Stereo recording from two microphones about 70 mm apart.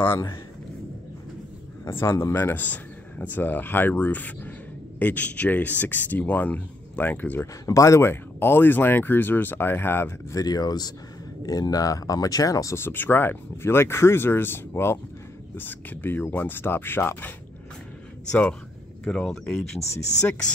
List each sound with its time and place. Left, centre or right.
1.9 s speech: left
2.6 s speech: left
7.6 s speech: left
8.0 s speech: left
10.3 s speech: left
12.7 s speech: left
18.3 s speech: centre